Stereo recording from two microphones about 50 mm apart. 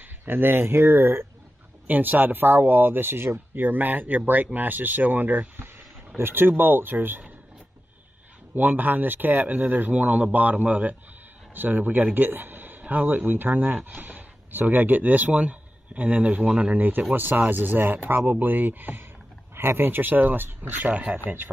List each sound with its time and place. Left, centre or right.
0.0 s speech: right
1.9 s speech: right
6.1 s speech: right
8.5 s speech: right
16.7 s speech: right
19.5 s speech: right